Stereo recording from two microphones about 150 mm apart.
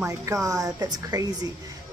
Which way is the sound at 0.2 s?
20° right (ahead or behind).